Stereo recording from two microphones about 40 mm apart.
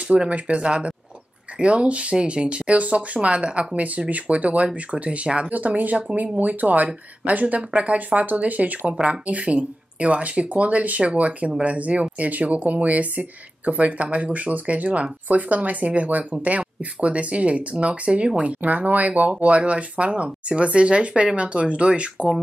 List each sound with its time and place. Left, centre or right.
0.3 s speech: right